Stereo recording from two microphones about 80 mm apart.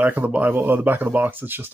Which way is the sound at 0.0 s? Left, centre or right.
Right.